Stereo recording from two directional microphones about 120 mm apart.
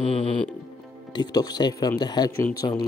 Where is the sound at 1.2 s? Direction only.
35° left (ahead or behind).